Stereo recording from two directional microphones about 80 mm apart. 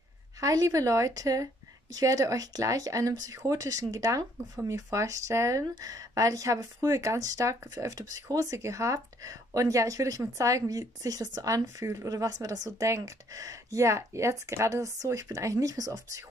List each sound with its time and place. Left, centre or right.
0.4 s a woman's voice: right